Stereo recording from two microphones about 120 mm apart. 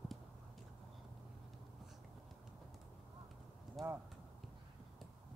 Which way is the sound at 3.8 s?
Centre (ahead or behind).